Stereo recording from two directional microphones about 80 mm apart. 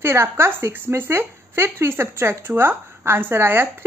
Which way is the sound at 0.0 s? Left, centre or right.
Right.